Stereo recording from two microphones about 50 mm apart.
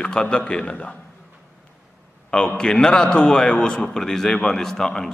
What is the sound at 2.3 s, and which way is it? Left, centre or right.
A man's voice, centre.